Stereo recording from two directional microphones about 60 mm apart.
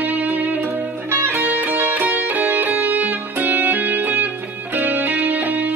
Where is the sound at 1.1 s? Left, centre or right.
Right.